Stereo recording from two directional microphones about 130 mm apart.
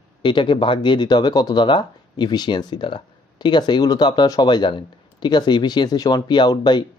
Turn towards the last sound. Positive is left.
turn(degrees=35)  # may be behind; listen again after turning